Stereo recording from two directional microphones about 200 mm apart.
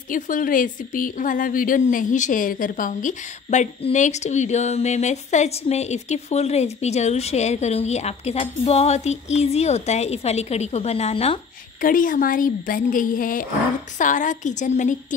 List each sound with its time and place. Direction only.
0.1 s a woman's voice: 40° left (ahead or behind)
11.8 s a woman's voice: 45° left (ahead or behind)